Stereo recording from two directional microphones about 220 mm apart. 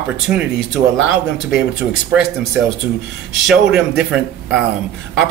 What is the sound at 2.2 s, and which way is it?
Speech, centre (ahead or behind).